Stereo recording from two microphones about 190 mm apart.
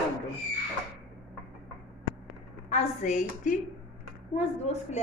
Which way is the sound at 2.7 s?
40° left (ahead or behind).